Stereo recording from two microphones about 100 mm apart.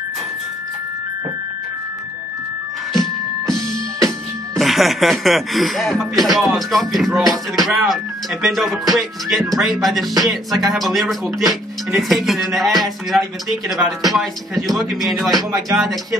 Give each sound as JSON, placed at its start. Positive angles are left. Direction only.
{"t": 3.6, "sound": "music", "side_deg": -35}
{"t": 4.6, "sound": "speech", "side_deg": 0}
{"t": 15.3, "sound": "speech", "side_deg": -35}
{"t": 15.8, "sound": "speech", "side_deg": 0}